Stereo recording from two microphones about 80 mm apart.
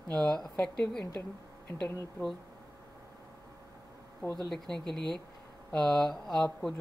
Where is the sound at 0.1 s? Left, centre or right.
Centre.